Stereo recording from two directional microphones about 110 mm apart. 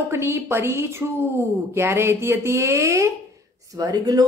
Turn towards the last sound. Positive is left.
turn(degrees=-35)  # may be behind; listen again after turning